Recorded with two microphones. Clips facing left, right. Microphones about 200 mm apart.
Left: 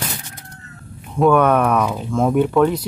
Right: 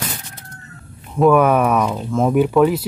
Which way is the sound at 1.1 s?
5° right (ahead or behind).